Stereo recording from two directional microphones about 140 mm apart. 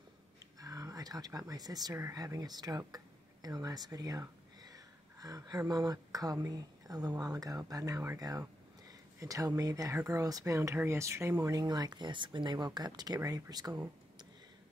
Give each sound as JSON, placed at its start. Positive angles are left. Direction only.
{"t": 0.6, "sound": "speech", "side_deg": -25}
{"t": 11.6, "sound": "speech", "side_deg": -30}